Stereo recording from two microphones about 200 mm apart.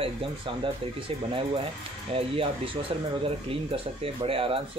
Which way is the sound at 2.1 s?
25° right (ahead or behind).